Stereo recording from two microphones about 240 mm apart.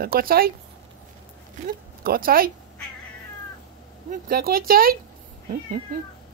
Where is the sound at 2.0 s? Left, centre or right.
Right.